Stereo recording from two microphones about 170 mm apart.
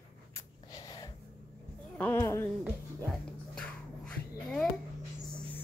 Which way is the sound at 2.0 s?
15° left (ahead or behind).